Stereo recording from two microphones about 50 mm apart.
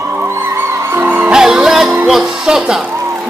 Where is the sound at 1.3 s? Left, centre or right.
Centre.